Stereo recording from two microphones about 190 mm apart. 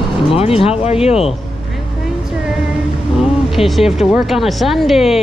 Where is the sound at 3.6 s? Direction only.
Centre (ahead or behind).